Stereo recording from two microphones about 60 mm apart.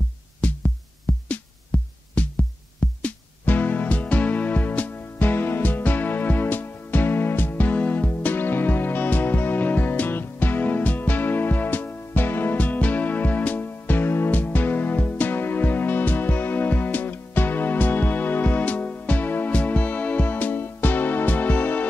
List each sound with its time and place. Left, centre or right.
0.4 s music: left